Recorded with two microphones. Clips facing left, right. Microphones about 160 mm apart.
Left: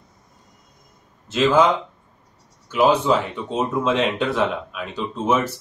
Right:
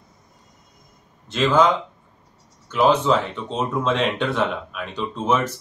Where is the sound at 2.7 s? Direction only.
10° left (ahead or behind).